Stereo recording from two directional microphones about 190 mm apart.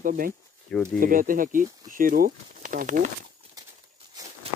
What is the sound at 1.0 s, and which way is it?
Speech, 45° right (ahead or behind).